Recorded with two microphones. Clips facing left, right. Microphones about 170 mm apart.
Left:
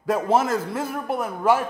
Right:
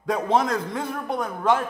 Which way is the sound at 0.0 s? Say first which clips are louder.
Left 1 dB; 5° left (ahead or behind).